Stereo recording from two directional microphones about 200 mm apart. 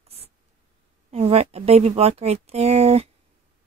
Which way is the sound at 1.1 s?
30° right (ahead or behind).